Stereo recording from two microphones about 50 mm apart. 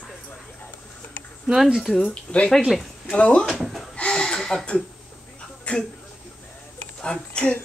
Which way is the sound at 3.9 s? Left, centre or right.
Centre.